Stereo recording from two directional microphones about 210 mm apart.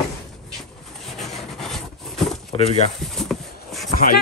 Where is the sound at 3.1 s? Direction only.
Centre (ahead or behind).